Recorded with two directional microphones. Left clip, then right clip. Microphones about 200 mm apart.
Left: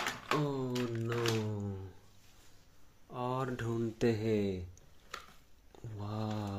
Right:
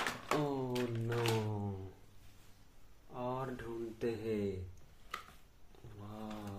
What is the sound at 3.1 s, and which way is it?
Speech, 55° left (ahead or behind).